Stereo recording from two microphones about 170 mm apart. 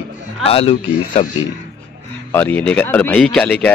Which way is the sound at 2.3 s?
10° left (ahead or behind).